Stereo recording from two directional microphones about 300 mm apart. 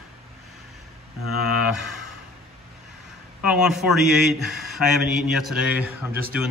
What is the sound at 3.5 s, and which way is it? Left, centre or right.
Speech, centre.